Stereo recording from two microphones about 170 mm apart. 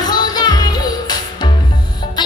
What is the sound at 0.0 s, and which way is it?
Music, 25° left (ahead or behind).